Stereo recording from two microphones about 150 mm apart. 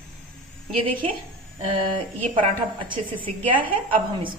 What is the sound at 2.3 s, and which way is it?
A woman's voice, 35° right (ahead or behind).